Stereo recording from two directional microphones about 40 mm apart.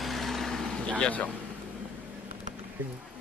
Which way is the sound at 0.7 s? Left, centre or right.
Left.